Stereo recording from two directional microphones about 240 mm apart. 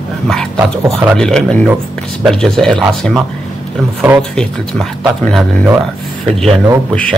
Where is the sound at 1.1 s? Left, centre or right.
Centre.